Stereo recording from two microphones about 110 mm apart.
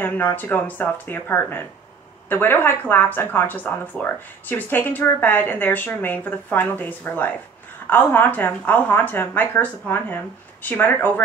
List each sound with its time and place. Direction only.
0.0 s speech: 20° left (ahead or behind)